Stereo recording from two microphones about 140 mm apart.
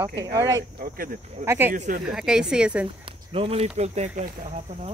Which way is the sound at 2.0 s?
5° right (ahead or behind).